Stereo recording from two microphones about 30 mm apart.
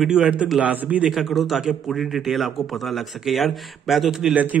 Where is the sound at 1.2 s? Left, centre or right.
Centre.